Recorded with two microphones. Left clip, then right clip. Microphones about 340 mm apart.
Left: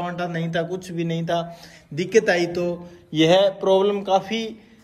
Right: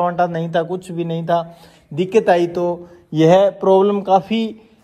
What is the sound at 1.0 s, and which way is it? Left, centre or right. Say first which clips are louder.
Speech: right 6 dB; right.